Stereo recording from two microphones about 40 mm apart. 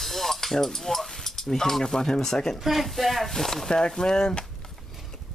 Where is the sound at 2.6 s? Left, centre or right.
Centre.